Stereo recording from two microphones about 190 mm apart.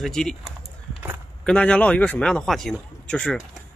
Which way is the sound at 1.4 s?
5° left (ahead or behind).